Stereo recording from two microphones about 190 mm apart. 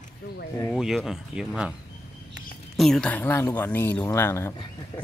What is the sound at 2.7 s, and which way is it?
Speech, centre (ahead or behind).